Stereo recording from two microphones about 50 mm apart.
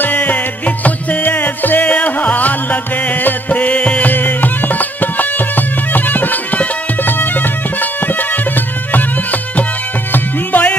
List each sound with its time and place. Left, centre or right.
0.0 s music: left
4.1 s music: left